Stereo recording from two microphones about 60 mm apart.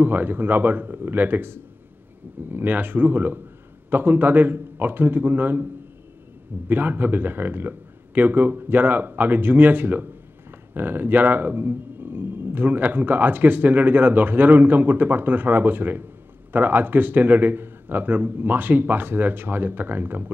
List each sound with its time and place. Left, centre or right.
0.0 s speech: right
6.7 s speech: right